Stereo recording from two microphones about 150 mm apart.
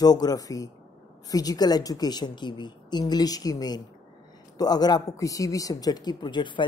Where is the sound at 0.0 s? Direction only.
25° left (ahead or behind).